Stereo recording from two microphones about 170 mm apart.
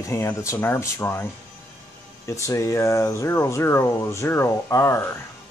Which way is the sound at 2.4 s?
20° left (ahead or behind).